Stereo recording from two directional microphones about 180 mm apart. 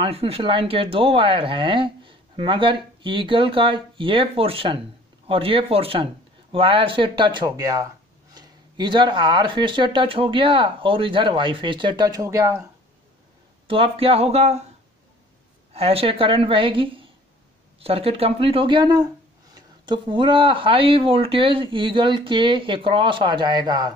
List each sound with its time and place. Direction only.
0.0 s speech: 30° right (ahead or behind); by 12.6 s 15° right (ahead or behind)
13.7 s speech: 30° right (ahead or behind)
15.7 s speech: 35° right (ahead or behind)